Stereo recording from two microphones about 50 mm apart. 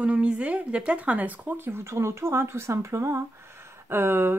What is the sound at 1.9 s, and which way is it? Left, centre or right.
Speech, right.